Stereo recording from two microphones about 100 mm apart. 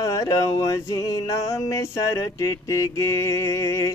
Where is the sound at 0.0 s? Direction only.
35° left (ahead or behind).